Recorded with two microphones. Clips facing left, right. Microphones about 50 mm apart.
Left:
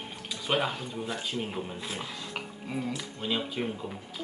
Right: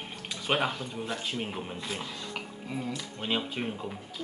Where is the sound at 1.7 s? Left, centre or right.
Centre.